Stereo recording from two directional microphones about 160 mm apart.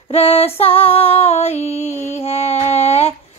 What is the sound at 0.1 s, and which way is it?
Female singing, 40° left (ahead or behind).